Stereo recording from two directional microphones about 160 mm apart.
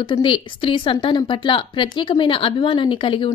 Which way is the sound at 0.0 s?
30° left (ahead or behind).